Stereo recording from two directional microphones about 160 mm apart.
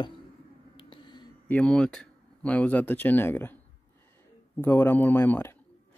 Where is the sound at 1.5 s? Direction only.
10° left (ahead or behind).